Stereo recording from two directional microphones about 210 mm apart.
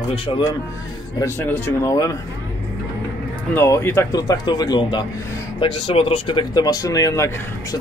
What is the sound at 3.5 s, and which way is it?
Speech, 10° left (ahead or behind).